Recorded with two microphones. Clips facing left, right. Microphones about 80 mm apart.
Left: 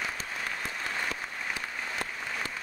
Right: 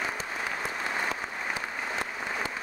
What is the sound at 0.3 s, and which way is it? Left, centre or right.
Applause, centre.